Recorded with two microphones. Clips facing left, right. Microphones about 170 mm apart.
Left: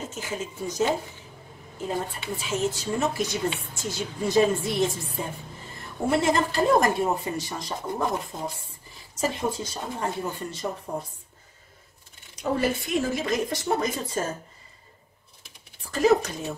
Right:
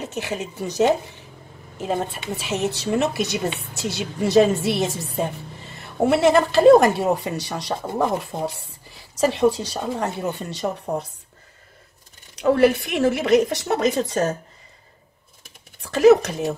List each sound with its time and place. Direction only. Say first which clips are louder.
0.0 s a woman's voice: right 5 dB; 70° right (ahead or behind)
12.4 s a woman's voice: right 9 dB; 70° right (ahead or behind)
15.8 s speech: right 7 dB; 75° right (ahead or behind)